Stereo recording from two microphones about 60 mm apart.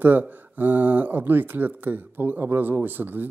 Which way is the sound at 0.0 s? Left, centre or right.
Right.